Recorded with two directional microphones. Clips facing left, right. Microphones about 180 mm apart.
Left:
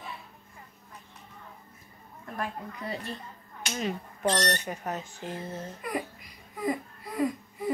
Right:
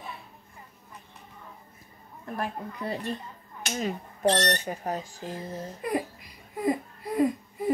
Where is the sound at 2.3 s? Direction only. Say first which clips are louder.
Right 2 dB; 35° right (ahead or behind).